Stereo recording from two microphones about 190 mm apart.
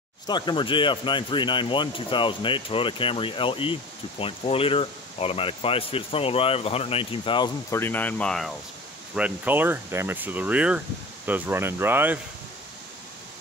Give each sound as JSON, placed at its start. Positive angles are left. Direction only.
{"t": 0.3, "sound": "speech", "side_deg": 25}
{"t": 7.8, "sound": "speech", "side_deg": 10}